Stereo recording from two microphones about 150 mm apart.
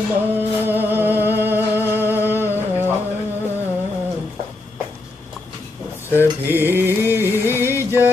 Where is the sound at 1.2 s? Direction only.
15° right (ahead or behind).